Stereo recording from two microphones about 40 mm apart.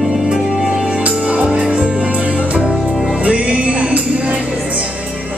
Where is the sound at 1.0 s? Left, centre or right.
Right.